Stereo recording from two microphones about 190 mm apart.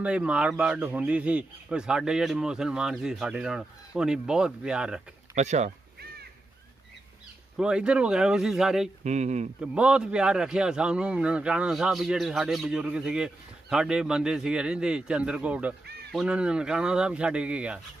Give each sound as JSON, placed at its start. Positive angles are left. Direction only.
{"t": 0.0, "sound": "a man's voice", "side_deg": -5}
{"t": 5.3, "sound": "speech", "side_deg": -35}
{"t": 7.5, "sound": "a man's voice", "side_deg": -5}
{"t": 9.0, "sound": "speech", "side_deg": -35}
{"t": 9.6, "sound": "a man's voice", "side_deg": -5}